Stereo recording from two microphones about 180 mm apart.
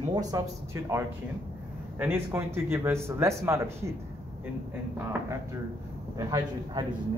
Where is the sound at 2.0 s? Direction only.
10° right (ahead or behind).